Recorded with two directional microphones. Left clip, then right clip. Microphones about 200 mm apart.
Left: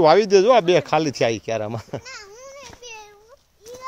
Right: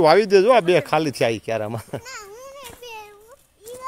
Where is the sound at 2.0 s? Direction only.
40° right (ahead or behind).